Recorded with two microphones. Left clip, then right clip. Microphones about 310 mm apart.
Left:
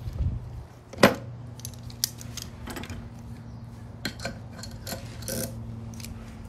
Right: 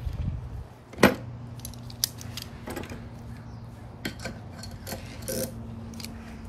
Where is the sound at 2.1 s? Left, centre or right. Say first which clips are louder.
Right 1 dB; centre.